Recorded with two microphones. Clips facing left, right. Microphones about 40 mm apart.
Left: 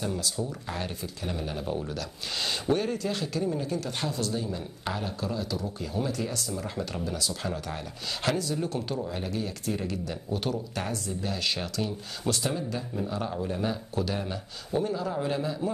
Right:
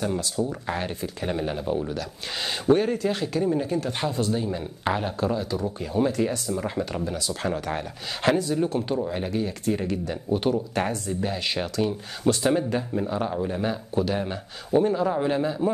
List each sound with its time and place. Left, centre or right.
0.0 s speech: right
1.6 s speech: centre
12.4 s speech: right